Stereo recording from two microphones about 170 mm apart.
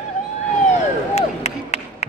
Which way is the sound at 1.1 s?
40° left (ahead or behind).